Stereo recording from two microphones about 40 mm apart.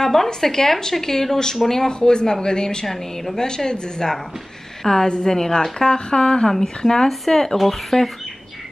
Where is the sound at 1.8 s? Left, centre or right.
Centre.